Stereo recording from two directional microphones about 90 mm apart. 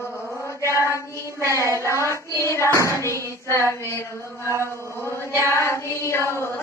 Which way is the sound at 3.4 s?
30° left (ahead or behind).